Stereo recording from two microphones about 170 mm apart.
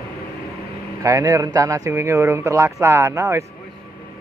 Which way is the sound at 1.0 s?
20° right (ahead or behind).